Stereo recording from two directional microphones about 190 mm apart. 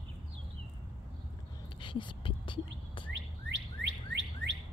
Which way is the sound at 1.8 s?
25° left (ahead or behind).